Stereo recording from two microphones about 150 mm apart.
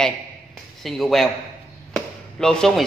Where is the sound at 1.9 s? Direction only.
5° left (ahead or behind).